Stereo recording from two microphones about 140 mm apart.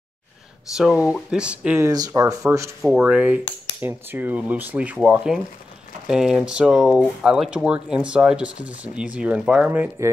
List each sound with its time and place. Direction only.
0.7 s speech: 5° right (ahead or behind)
1.9 s speech: 25° right (ahead or behind)
3.0 s speech: 10° right (ahead or behind)
9.7 s speech: 20° right (ahead or behind)